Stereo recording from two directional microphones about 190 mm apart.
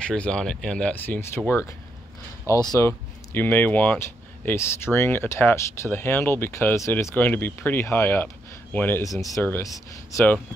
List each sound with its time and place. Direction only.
0.0 s speech: 5° left (ahead or behind)